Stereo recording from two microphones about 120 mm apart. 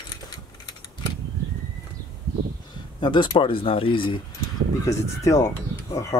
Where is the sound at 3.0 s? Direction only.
40° left (ahead or behind).